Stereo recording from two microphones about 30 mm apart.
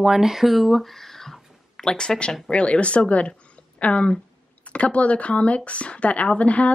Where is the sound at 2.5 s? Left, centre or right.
Left.